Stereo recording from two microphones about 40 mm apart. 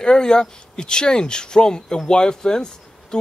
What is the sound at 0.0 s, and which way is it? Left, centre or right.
Speech, centre.